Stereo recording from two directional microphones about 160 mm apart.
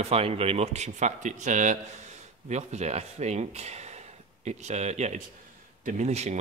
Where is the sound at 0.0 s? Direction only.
40° right (ahead or behind).